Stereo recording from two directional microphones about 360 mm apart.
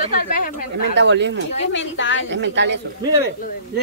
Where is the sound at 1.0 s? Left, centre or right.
Right.